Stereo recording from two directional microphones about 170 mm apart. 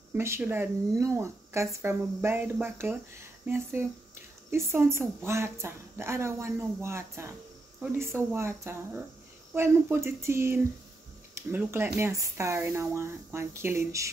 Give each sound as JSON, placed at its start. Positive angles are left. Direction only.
{"t": 0.1, "sound": "a woman's voice", "side_deg": -15}